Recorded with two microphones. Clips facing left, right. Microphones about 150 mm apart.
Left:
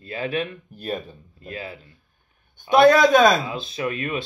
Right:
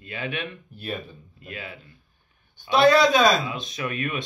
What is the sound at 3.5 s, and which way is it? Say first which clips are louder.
Speech: left 3 dB; 30° left (ahead or behind).